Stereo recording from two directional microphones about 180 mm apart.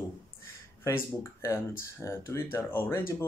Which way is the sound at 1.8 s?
15° left (ahead or behind).